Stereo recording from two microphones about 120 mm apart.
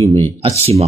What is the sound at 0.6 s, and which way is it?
Speech, 60° right (ahead or behind).